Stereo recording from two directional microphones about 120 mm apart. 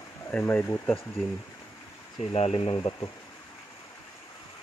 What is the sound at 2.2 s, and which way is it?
Speech, 55° left (ahead or behind).